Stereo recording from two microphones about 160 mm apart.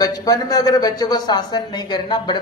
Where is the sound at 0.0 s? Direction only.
20° left (ahead or behind).